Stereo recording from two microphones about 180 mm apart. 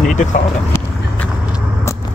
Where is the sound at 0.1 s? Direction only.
45° left (ahead or behind).